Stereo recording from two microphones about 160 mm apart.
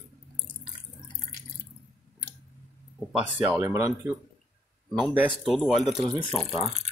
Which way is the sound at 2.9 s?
10° right (ahead or behind).